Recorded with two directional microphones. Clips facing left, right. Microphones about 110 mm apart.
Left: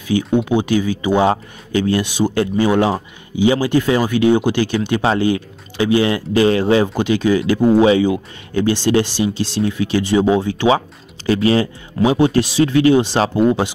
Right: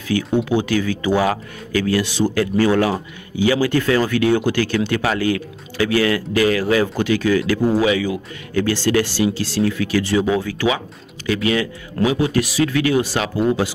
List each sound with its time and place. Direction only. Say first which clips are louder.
0.1 s speech: left 2 dB; 20° left (ahead or behind)